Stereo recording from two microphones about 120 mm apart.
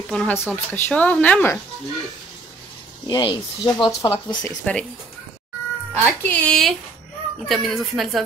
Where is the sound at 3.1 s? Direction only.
40° left (ahead or behind).